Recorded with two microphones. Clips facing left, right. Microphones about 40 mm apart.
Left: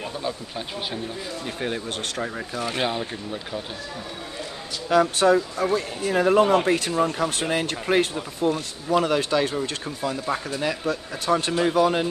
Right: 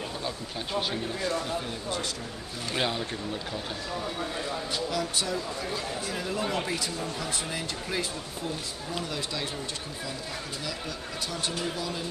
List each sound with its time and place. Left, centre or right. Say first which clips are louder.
1.6 s speech: left 5 dB; left
2.6 s speech: left 3 dB; centre
4.8 s speech: left 16 dB; left